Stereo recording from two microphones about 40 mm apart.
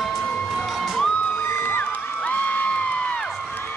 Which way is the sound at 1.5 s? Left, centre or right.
Left.